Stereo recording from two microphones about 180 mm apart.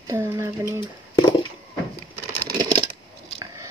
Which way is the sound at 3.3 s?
15° right (ahead or behind).